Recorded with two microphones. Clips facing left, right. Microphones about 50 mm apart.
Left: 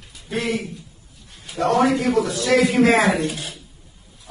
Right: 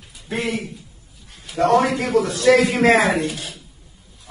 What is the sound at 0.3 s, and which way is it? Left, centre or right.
Speech, right.